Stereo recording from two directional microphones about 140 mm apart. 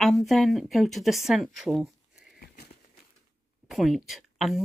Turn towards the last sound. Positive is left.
turn(degrees=0)  # may be behind; listen again after turning